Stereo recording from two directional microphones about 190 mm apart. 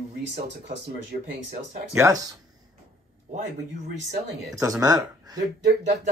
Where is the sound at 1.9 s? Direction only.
15° right (ahead or behind).